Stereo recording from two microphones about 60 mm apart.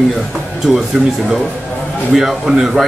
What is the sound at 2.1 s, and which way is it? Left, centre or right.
Speech, centre.